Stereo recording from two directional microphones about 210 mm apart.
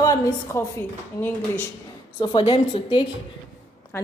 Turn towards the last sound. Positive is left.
turn(degrees=10)  # may be behind; listen again after turning